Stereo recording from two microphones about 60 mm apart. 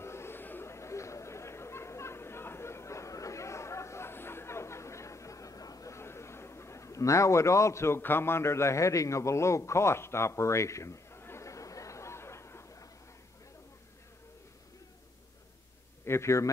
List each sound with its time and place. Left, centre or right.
0.0 s music: left
0.7 s chatter: left
5.9 s a man's voice: left
11.4 s a sound: left
16.1 s speech: left